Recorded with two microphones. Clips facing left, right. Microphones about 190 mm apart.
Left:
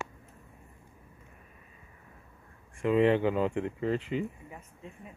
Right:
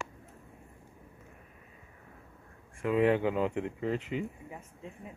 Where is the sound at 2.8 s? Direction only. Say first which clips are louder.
Left 2 dB; 10° right (ahead or behind).